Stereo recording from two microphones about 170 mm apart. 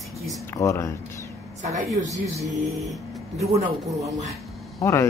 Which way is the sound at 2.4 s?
Centre (ahead or behind).